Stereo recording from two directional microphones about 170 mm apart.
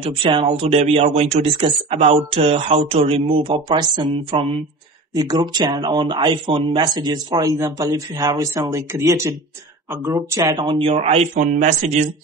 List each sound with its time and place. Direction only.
0.0 s speech: 30° right (ahead or behind)
11.3 s speech: 60° right (ahead or behind)
11.6 s speech: 45° right (ahead or behind)